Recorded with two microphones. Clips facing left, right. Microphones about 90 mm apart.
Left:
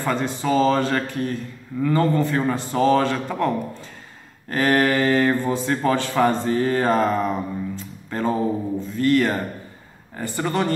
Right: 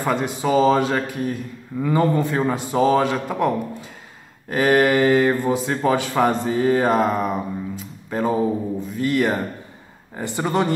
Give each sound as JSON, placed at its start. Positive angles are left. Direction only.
{"t": 0.0, "sound": "speech", "side_deg": -15}